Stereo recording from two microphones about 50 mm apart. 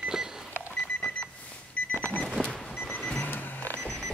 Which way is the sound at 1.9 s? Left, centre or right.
Left.